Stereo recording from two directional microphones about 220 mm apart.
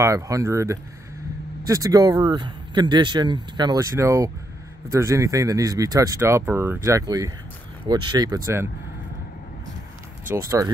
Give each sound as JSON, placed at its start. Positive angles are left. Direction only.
{"t": 0.0, "sound": "speech", "side_deg": -15}
{"t": 10.3, "sound": "speech", "side_deg": -15}